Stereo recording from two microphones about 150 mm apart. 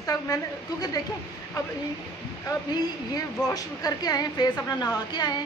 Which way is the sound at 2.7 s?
25° left (ahead or behind).